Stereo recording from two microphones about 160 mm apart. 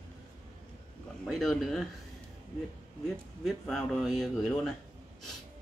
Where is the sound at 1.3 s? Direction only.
Centre (ahead or behind).